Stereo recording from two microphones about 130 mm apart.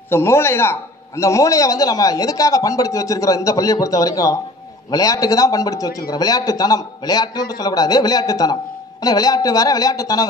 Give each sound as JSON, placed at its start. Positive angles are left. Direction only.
{"t": 0.1, "sound": "a man's voice", "side_deg": 20}